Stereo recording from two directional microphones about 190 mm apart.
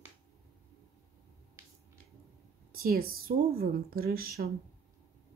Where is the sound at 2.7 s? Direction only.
50° right (ahead or behind).